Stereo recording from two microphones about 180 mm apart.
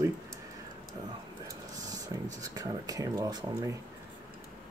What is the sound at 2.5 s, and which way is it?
Speech, 20° right (ahead or behind).